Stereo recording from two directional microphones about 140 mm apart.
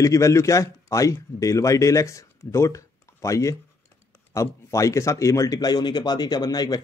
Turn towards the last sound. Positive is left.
turn(degrees=30)  # may be behind; listen again after turning